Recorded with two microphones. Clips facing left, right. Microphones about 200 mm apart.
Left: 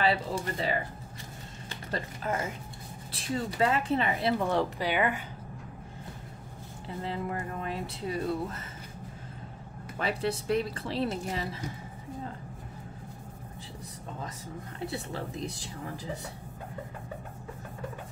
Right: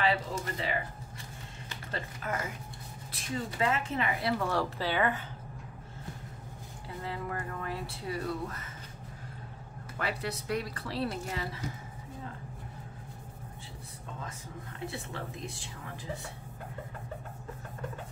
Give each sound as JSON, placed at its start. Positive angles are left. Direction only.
{"t": 0.0, "sound": "speech", "side_deg": 35}
{"t": 7.1, "sound": "speech", "side_deg": 25}
{"t": 9.9, "sound": "speech", "side_deg": 25}
{"t": 14.9, "sound": "speech", "side_deg": 35}